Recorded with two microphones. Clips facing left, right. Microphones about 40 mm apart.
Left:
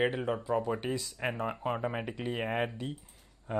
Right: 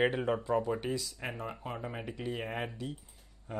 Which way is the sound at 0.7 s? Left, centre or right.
Centre.